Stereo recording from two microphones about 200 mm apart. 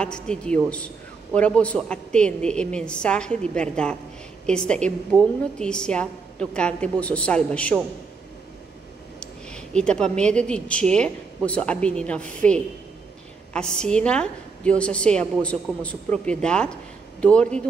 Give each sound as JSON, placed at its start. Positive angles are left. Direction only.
{"t": 0.0, "sound": "a woman's voice", "side_deg": 5}
{"t": 9.2, "sound": "a woman's voice", "side_deg": 5}